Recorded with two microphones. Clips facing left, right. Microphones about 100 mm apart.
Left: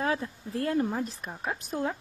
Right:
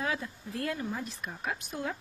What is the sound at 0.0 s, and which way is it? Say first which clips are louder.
Speech: left 4 dB; 35° left (ahead or behind).